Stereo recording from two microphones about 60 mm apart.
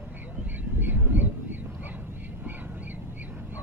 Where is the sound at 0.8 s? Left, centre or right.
Right.